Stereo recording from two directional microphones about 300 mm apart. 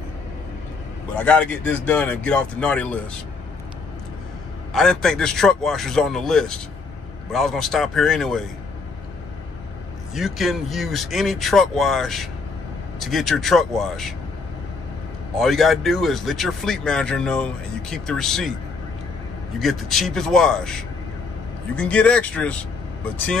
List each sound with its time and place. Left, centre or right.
1.1 s speech: centre
4.7 s speech: centre
10.1 s speech: centre
15.3 s speech: centre
19.6 s speech: centre